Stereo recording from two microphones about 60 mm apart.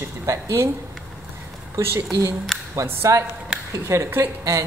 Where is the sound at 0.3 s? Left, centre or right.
Right.